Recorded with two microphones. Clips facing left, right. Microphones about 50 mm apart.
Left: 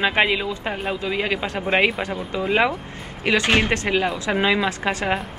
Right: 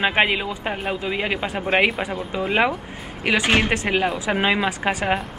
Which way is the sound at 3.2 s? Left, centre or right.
Centre.